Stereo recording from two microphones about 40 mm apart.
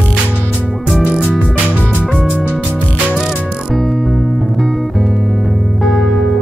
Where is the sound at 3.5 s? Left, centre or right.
Centre.